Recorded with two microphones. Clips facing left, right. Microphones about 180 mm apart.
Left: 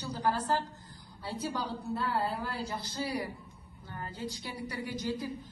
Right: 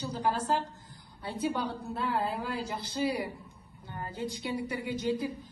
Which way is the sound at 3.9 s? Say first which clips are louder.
Right 3 dB; 20° right (ahead or behind).